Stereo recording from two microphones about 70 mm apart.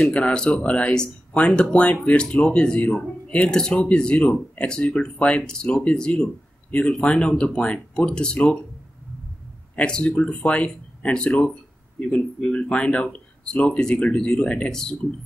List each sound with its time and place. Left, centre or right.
0.1 s speech: centre
9.8 s speech: centre